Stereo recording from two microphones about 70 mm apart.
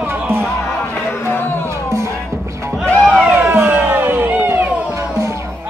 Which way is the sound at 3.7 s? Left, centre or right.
Right.